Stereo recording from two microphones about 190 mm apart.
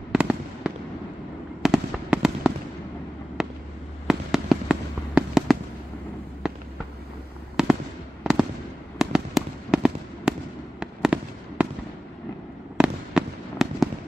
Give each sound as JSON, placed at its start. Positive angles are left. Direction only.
{"t": 0.1, "sound": "fireworks", "side_deg": -5}
{"t": 3.4, "sound": "a sound", "side_deg": 0}
{"t": 4.1, "sound": "fireworks", "side_deg": 0}
{"t": 12.7, "sound": "fireworks", "side_deg": -5}